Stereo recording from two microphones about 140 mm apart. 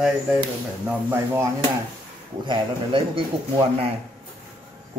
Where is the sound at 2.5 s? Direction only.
40° right (ahead or behind).